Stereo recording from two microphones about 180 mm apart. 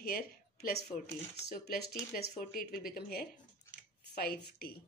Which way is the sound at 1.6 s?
60° left (ahead or behind).